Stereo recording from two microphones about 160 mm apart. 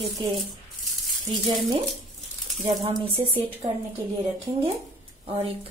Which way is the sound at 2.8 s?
30° right (ahead or behind).